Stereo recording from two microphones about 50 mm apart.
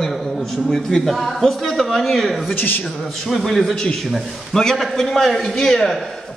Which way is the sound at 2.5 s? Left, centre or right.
Left.